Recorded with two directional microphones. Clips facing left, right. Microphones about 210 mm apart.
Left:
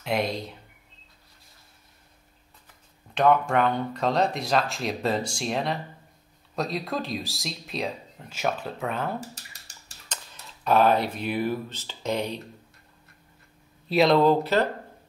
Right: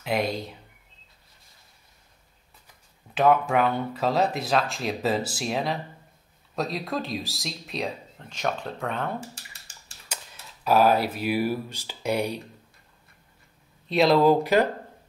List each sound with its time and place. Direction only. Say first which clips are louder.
0.0 s speech: even; centre (ahead or behind)
3.2 s speech: even; 5° right (ahead or behind)
9.3 s typing: left 1 dB; 40° left (ahead or behind)
10.0 s speech: right 1 dB; 10° right (ahead or behind)
13.8 s speech: even; centre (ahead or behind)
14.3 s speech: right 2 dB; 15° right (ahead or behind)